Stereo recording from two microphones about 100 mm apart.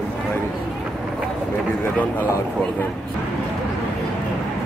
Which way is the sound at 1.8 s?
15° left (ahead or behind).